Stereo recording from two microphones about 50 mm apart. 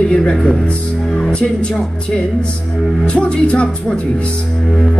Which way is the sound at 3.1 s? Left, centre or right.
Left.